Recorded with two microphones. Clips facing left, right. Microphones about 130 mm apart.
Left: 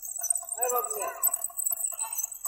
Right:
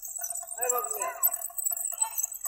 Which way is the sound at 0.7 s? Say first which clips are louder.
Left 1 dB; 20° left (ahead or behind).